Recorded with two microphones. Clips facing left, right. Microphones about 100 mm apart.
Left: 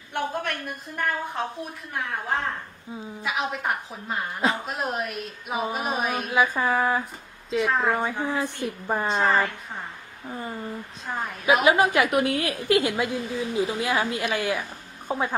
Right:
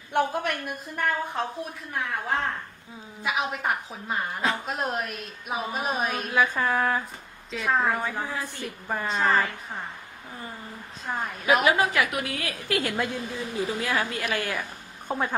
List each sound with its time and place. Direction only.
0.1 s a woman's voice: 10° right (ahead or behind)
0.9 s a woman's voice: centre (ahead or behind)
8.8 s a woman's voice: 25° left (ahead or behind)
9.1 s a woman's voice: centre (ahead or behind)
11.1 s a woman's voice: 5° right (ahead or behind)
11.4 s a woman's voice: 20° left (ahead or behind)
12.1 s a woman's voice: 30° left (ahead or behind)
12.4 s a woman's voice: 20° left (ahead or behind)
12.9 s a woman's voice: 5° left (ahead or behind)
13.7 s a woman's voice: 15° left (ahead or behind)